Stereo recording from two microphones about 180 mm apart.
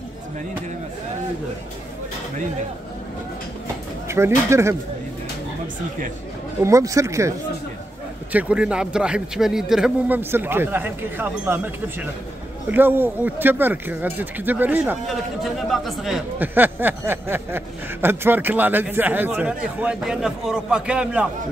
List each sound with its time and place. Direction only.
4.1 s speech: 15° right (ahead or behind)
6.6 s speech: 15° right (ahead or behind)
15.0 s speech: centre (ahead or behind)